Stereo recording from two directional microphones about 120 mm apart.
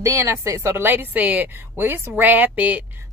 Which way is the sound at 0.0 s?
20° right (ahead or behind).